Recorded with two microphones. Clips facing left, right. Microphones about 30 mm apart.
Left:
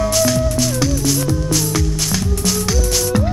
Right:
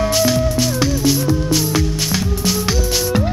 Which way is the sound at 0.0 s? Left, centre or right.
Centre.